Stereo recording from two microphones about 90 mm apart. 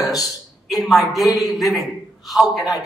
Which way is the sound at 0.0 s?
40° left (ahead or behind).